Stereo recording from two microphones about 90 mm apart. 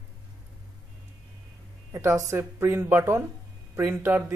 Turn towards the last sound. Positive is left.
turn(degrees=-25)  # may be behind; listen again after turning